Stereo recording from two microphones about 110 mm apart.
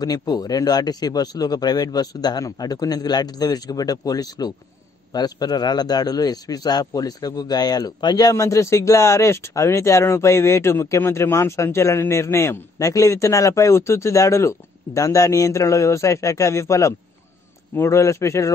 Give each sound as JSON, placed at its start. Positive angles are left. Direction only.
{"t": 0.0, "sound": "speech", "side_deg": 35}